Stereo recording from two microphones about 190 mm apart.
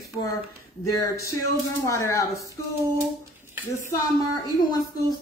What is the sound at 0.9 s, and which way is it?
Speech, 15° left (ahead or behind).